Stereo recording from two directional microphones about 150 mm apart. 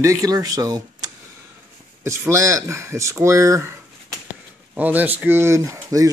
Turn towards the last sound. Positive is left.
turn(degrees=-20)  # may be behind; listen again after turning